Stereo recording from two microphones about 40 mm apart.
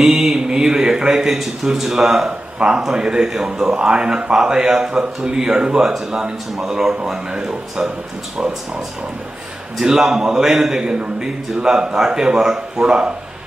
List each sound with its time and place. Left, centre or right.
0.0 s a man's voice: centre
2.2 s a man's voice: right
9.8 s a man's voice: centre